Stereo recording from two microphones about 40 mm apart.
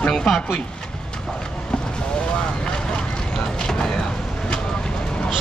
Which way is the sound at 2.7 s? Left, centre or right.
Left.